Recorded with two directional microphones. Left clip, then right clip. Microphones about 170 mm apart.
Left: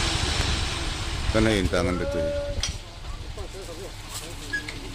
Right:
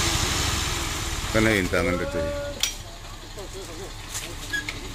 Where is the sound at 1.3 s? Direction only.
10° left (ahead or behind).